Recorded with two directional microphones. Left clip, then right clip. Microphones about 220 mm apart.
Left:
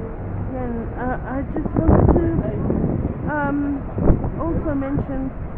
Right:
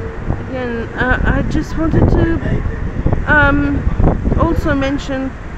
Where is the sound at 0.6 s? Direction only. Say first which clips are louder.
Right 9 dB; 30° right (ahead or behind).